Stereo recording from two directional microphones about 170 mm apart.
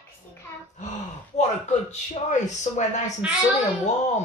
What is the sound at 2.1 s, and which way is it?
Speech, 45° left (ahead or behind).